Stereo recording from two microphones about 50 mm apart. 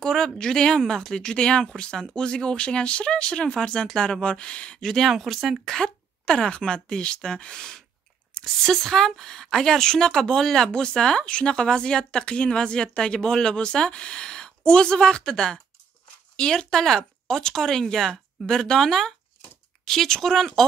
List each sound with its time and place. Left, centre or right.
0.0 s speech: centre
4.8 s speech: centre